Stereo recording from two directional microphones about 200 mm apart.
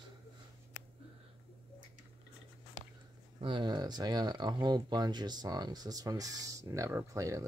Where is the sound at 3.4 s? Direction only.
25° right (ahead or behind).